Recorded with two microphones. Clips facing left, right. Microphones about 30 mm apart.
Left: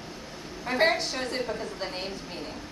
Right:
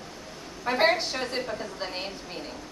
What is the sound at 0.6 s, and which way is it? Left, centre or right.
A woman's voice, centre.